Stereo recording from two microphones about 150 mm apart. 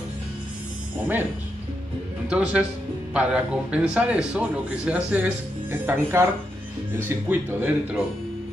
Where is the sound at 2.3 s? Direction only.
10° right (ahead or behind).